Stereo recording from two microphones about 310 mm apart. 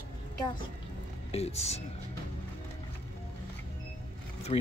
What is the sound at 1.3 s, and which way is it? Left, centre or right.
Speech, centre.